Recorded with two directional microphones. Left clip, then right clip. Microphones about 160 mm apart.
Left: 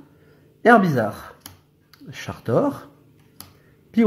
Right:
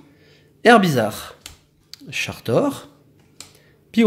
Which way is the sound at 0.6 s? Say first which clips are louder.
Right 2 dB; 10° right (ahead or behind).